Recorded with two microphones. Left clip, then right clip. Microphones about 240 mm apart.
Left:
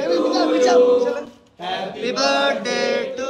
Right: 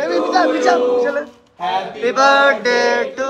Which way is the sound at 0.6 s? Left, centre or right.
Centre.